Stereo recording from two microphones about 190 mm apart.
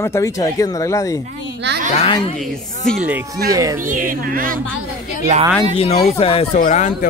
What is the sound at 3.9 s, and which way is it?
Speech, 45° right (ahead or behind).